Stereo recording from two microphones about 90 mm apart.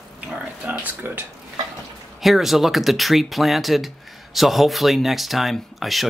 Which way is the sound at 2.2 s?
Centre (ahead or behind).